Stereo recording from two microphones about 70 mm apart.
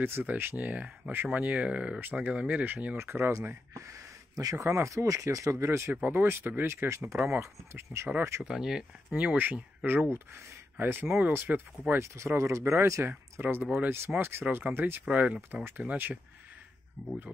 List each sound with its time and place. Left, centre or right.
0.0 s speech: right
3.0 s speech: right
8.5 s speech: centre
9.1 s speech: right
10.1 s speech: right
10.8 s speech: right
12.0 s speech: right
13.1 s speech: right
15.0 s speech: centre
15.5 s speech: right
17.0 s speech: centre